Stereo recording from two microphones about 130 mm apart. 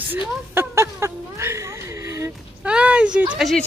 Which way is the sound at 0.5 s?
20° right (ahead or behind).